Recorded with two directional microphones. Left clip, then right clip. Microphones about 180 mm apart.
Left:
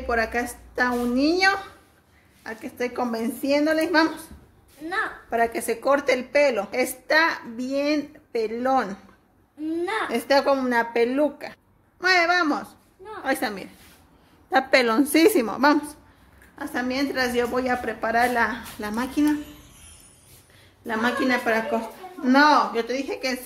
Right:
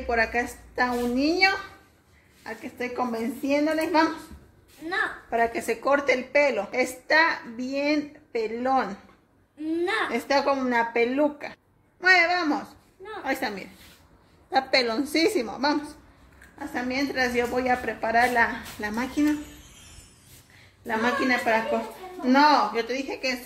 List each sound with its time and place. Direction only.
0.0 s a child's voice: 20° left (ahead or behind)
4.8 s a woman's voice: 35° left (ahead or behind)
5.3 s a woman's voice: 10° left (ahead or behind); by 13.7 s 25° left (ahead or behind)
14.5 s a woman's voice: 45° left (ahead or behind)
16.5 s a woman's voice: 25° left (ahead or behind)
20.8 s a woman's voice: 15° left (ahead or behind)